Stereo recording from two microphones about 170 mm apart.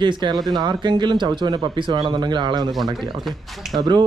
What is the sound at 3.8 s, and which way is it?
Speech, 25° right (ahead or behind).